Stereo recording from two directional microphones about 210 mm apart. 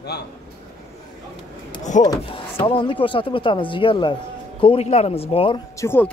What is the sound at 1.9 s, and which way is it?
Speech, 35° left (ahead or behind).